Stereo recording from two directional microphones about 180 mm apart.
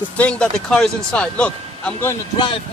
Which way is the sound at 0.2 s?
5° left (ahead or behind).